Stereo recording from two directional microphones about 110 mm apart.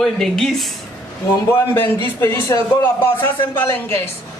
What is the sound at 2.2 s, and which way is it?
Speech, 20° left (ahead or behind).